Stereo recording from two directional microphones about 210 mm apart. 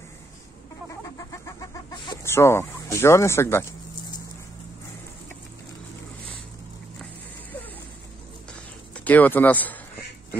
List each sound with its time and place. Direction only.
1.0 s chicken: 15° left (ahead or behind)
8.9 s speech: 10° left (ahead or behind)